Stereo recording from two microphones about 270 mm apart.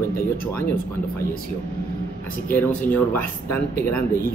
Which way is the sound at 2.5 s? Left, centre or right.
Centre.